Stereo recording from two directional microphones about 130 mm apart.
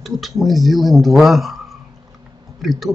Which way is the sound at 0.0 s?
Centre (ahead or behind).